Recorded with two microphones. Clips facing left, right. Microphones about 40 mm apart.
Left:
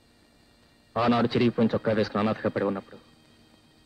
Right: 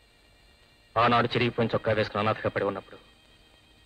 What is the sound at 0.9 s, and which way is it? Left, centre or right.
A man's voice, right.